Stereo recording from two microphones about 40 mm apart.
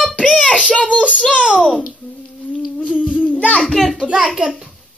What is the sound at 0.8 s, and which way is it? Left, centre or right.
Child singing, right.